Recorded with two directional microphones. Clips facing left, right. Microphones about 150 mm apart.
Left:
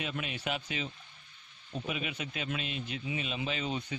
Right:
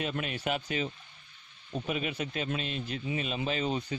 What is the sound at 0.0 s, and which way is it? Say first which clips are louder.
A man's voice: right 4 dB; 45° right (ahead or behind).